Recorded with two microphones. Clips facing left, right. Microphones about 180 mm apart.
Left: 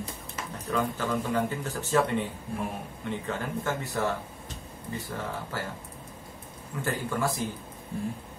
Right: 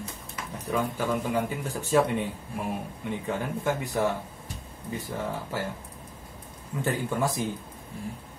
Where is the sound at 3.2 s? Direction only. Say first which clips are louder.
Right 4 dB; 15° right (ahead or behind).